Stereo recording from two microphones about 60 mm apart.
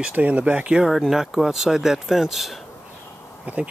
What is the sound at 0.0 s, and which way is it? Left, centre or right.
Speech, right.